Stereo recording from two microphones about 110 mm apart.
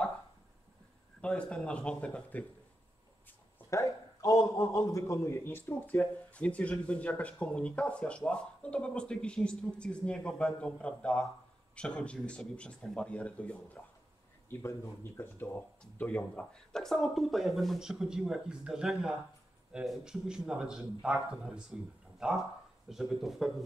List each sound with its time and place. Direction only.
1.2 s a man's voice: 10° left (ahead or behind)
3.3 s a sound: 15° left (ahead or behind)
3.8 s a man's voice: 30° left (ahead or behind); by 13.8 s 10° left (ahead or behind)
14.5 s speech: 25° left (ahead or behind); by 23.5 s centre (ahead or behind)